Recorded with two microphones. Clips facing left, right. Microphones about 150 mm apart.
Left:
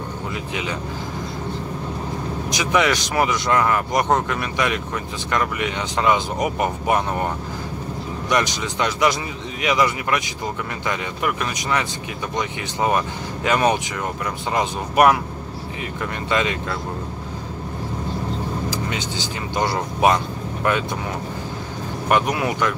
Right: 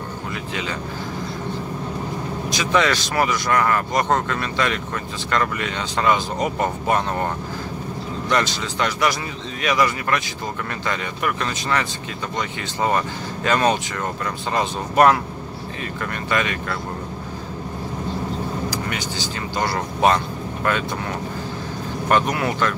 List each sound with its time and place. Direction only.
0.5 s speech: 20° left (ahead or behind)
2.5 s speech: 15° left (ahead or behind)
8.3 s speech: 15° left (ahead or behind)
18.7 s speech: 20° left (ahead or behind)
22.1 s speech: 15° left (ahead or behind)